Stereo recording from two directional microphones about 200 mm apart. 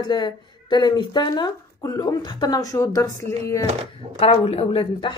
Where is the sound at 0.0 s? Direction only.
20° left (ahead or behind).